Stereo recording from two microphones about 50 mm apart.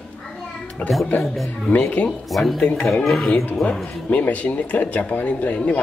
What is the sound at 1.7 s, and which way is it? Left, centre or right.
Speech, left.